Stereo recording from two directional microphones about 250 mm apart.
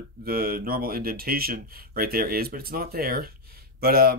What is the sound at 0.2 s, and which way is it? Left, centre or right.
Speech, right.